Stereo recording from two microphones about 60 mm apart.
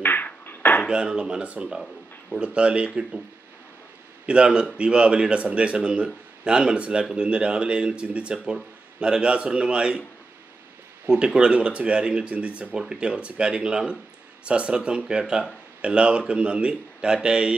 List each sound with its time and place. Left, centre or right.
0.0 s a sound: left
0.8 s speech: centre
1.8 s a sound: centre
2.4 s speech: centre
4.3 s speech: centre
11.1 s speech: centre